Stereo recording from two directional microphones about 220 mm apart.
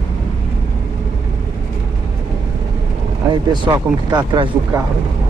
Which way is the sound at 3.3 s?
20° right (ahead or behind).